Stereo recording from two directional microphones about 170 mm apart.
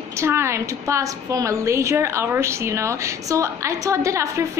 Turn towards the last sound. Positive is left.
turn(degrees=-15)  # may be behind; listen again after turning